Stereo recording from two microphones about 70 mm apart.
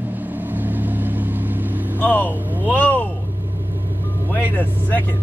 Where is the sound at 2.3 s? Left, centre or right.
Right.